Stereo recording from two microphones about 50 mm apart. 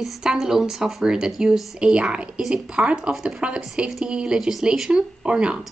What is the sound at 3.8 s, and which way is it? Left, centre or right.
Speech, centre.